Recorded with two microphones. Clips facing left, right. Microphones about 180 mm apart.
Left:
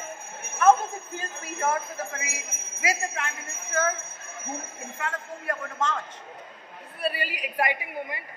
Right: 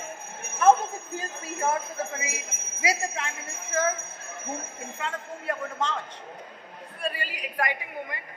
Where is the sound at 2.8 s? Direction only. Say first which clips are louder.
Right 1 dB; 25° right (ahead or behind).